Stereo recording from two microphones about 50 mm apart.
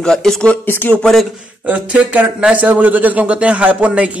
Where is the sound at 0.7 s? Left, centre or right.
Left.